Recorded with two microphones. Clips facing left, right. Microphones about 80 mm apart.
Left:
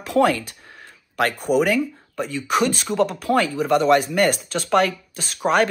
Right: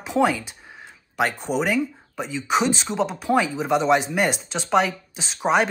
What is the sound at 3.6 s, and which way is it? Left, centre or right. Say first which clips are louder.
Speech: left 3 dB; right.